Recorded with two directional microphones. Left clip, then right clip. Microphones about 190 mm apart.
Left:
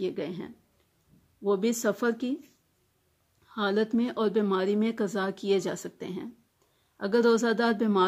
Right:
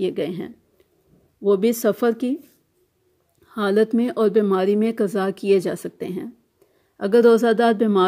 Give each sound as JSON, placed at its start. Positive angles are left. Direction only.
{"t": 0.0, "sound": "a woman's voice", "side_deg": -30}
{"t": 3.4, "sound": "a woman's voice", "side_deg": -30}